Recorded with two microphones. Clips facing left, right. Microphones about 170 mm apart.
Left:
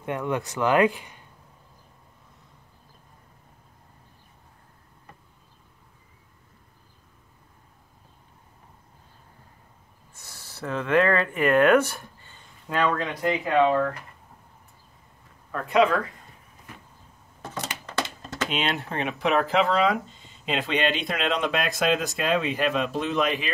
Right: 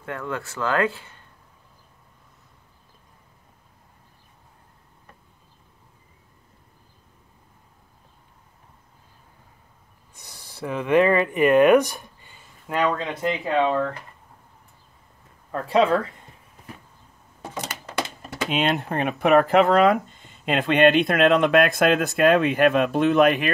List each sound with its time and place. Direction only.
0.0 s speech: 20° left (ahead or behind)
10.1 s speech: 15° right (ahead or behind)
13.1 s speech: 25° right (ahead or behind)
15.5 s speech: 30° right (ahead or behind)
17.4 s a sound: 10° right (ahead or behind)
18.5 s speech: 55° right (ahead or behind)